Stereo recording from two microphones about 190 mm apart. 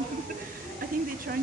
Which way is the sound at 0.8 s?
50° right (ahead or behind).